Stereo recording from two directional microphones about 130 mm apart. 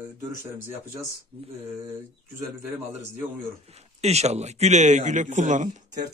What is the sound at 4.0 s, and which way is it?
A man's voice, 55° right (ahead or behind).